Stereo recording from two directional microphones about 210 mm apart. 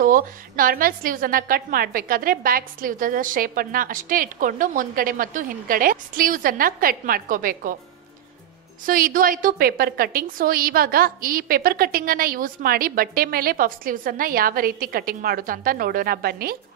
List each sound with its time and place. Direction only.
0.0 s a woman's voice: 40° right (ahead or behind)
8.8 s a woman's voice: 40° right (ahead or behind)